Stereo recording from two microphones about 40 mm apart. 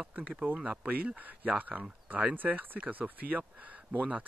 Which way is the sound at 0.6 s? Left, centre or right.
Right.